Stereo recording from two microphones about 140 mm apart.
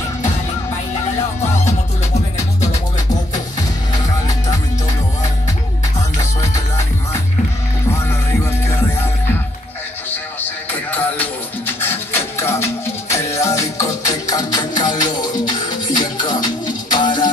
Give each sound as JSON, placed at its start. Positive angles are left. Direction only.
{"t": 3.9, "sound": "music", "side_deg": 25}
{"t": 10.7, "sound": "music", "side_deg": 10}